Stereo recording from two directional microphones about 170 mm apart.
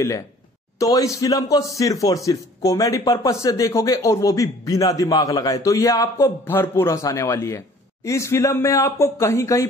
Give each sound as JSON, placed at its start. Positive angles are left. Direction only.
{"t": 0.7, "sound": "speech", "side_deg": 20}